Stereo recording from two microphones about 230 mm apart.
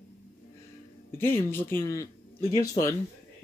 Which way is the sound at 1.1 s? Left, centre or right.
Centre.